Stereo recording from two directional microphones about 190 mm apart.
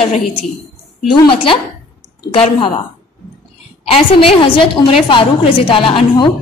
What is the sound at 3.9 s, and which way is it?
A woman's voice, 30° left (ahead or behind).